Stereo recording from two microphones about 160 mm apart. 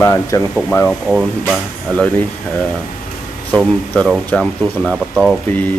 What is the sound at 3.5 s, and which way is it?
Speech, centre (ahead or behind).